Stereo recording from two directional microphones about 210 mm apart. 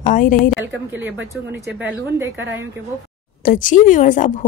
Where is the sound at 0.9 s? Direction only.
10° right (ahead or behind).